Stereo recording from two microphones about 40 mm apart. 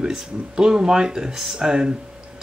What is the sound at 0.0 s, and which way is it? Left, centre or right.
Speech, centre.